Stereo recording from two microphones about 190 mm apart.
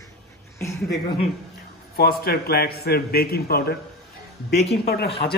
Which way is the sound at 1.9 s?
55° left (ahead or behind).